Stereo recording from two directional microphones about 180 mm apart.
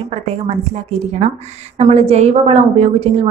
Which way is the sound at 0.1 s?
35° right (ahead or behind).